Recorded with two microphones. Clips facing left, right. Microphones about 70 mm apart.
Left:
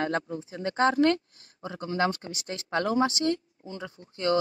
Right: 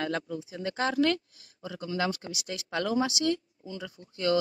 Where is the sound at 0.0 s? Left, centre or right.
Left.